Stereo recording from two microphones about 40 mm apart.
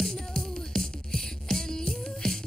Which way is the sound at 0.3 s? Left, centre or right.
Centre.